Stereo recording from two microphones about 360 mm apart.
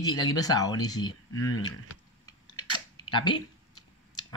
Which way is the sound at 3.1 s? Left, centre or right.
Centre.